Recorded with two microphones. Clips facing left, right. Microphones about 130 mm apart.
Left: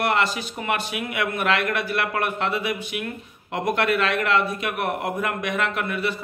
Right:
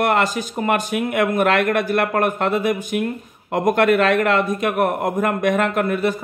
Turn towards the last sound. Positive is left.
turn(degrees=-45)  # may be behind; listen again after turning